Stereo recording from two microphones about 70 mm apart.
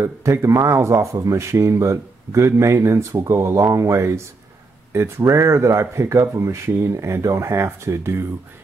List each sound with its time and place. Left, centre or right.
0.0 s speech: right